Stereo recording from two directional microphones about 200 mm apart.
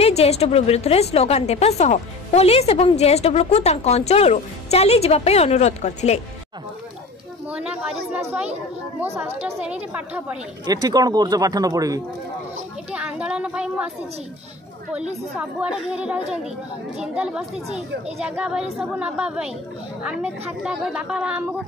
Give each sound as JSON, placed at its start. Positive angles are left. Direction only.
{"t": 0.0, "sound": "a woman's voice", "side_deg": 30}
{"t": 7.4, "sound": "a woman's voice", "side_deg": -5}
{"t": 9.9, "sound": "a woman's voice", "side_deg": -5}
{"t": 10.6, "sound": "speech", "side_deg": -20}
{"t": 12.9, "sound": "speech", "side_deg": -5}
{"t": 15.3, "sound": "speech", "side_deg": -5}